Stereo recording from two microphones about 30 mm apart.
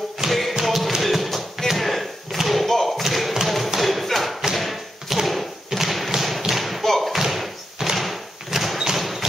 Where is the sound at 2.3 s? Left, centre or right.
Centre.